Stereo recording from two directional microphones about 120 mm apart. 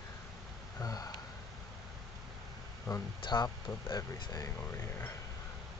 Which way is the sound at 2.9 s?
30° left (ahead or behind).